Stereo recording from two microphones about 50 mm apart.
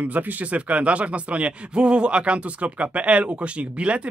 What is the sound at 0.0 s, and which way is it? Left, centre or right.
Speech, right.